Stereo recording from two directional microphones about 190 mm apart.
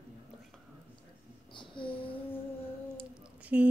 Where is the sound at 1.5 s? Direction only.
25° left (ahead or behind).